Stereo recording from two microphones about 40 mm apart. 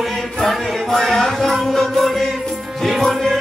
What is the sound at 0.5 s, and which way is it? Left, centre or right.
Music, centre.